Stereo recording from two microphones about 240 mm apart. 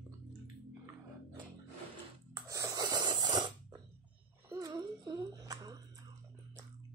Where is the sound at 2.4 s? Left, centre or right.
Centre.